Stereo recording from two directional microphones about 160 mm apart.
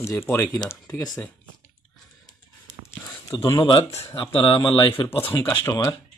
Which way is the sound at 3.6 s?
35° left (ahead or behind).